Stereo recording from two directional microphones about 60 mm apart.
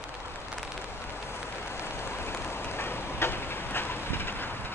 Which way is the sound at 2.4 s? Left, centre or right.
Left.